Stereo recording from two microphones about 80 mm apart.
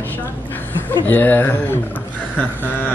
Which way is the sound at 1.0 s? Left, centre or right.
Left.